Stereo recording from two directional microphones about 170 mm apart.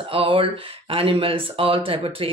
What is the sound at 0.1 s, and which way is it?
Speech, 30° right (ahead or behind).